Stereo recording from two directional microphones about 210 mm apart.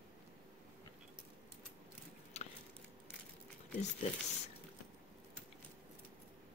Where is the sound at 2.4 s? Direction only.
30° left (ahead or behind).